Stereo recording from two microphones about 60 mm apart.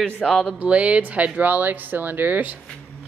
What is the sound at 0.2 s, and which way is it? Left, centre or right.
Speech, centre.